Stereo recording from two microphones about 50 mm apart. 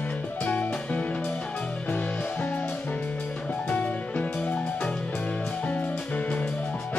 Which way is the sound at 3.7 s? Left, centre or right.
Left.